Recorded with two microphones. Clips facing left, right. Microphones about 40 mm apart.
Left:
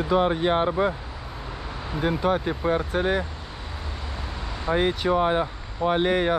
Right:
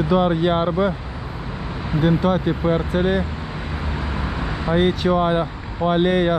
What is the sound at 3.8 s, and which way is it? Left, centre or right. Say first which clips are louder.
Vehicle: right 9 dB; right.